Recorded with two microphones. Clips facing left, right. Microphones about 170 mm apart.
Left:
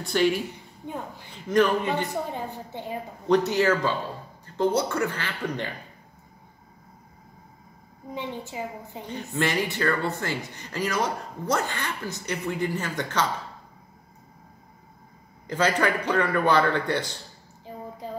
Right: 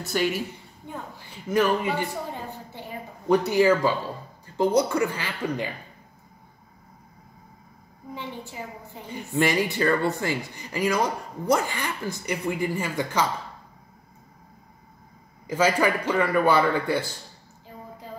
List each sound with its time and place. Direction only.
0.0 s a woman's voice: 5° right (ahead or behind)
1.5 s speech: 5° right (ahead or behind)
2.3 s a woman's voice: 20° left (ahead or behind)
3.3 s speech: 10° right (ahead or behind)
8.1 s a woman's voice: 15° left (ahead or behind)
9.1 s speech: 15° right (ahead or behind)
15.4 s speech: 10° right (ahead or behind)